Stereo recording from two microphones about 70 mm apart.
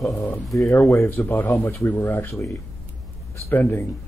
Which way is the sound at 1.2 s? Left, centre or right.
Left.